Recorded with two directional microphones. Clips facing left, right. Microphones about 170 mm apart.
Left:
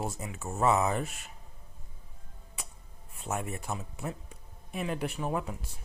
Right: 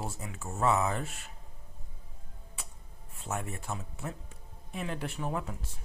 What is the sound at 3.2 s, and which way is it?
Speech, 15° left (ahead or behind).